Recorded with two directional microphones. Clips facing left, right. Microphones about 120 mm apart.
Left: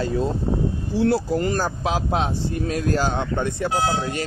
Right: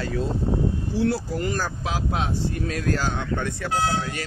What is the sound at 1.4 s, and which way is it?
Speech, 35° left (ahead or behind).